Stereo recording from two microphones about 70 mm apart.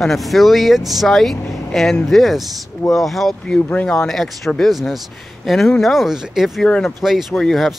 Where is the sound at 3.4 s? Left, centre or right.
Centre.